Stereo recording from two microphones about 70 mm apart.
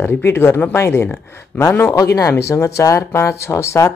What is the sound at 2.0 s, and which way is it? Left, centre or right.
Speech, left.